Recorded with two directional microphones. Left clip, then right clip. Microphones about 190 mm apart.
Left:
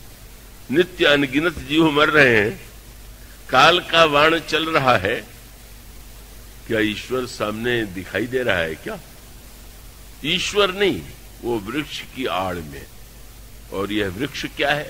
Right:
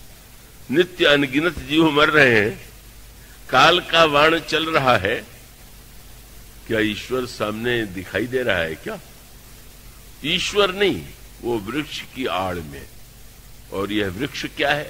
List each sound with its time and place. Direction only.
0.7 s speech: 40° left (ahead or behind)
6.7 s speech: 40° left (ahead or behind)
10.2 s speech: 40° left (ahead or behind)